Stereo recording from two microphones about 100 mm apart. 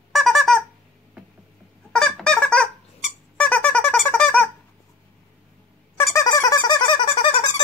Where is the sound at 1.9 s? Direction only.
5° left (ahead or behind).